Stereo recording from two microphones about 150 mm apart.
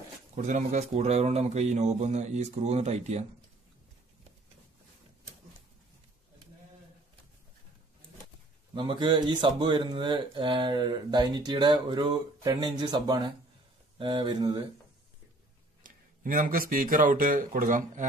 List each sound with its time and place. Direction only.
0.4 s speech: 55° right (ahead or behind)
8.7 s speech: 30° right (ahead or behind)
15.8 s speech: 65° right (ahead or behind)